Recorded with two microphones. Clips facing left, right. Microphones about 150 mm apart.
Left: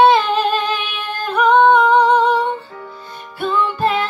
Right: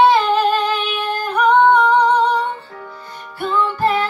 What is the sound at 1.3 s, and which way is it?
Singing, 10° left (ahead or behind).